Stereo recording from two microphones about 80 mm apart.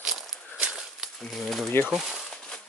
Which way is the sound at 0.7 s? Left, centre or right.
Centre.